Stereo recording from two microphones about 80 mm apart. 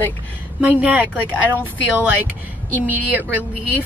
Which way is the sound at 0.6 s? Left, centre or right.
Centre.